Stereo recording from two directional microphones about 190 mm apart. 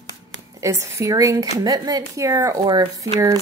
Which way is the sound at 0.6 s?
15° right (ahead or behind).